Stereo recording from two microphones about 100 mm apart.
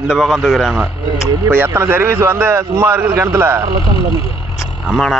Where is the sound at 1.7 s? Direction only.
25° right (ahead or behind).